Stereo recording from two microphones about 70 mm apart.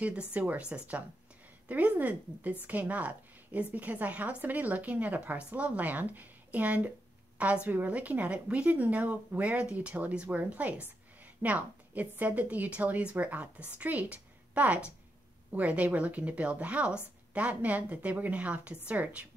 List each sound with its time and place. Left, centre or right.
0.3 s a woman's voice: right